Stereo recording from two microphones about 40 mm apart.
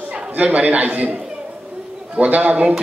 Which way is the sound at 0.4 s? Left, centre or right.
Right.